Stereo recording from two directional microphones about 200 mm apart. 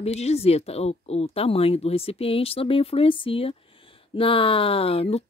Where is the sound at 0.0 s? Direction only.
30° left (ahead or behind).